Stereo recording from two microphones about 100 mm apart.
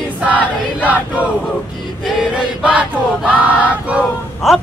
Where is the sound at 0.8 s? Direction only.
15° right (ahead or behind).